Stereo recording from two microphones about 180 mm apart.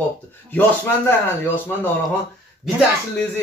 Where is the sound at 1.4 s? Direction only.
10° left (ahead or behind).